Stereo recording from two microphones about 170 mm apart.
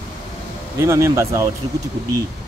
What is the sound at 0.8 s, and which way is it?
Speech, 15° right (ahead or behind).